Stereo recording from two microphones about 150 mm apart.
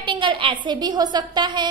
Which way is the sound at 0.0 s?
35° right (ahead or behind).